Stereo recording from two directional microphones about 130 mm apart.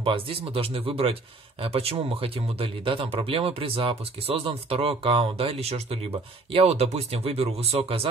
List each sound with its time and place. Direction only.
0.0 s speech: 45° right (ahead or behind)